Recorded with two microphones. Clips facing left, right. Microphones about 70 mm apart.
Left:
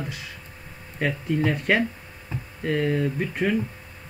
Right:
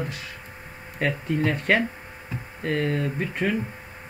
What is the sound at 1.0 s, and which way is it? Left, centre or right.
Speech, centre.